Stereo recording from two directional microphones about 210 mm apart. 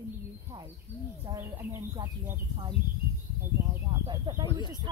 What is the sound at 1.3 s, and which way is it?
Speech, 15° right (ahead or behind).